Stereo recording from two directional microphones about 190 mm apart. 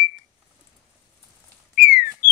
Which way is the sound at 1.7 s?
55° left (ahead or behind).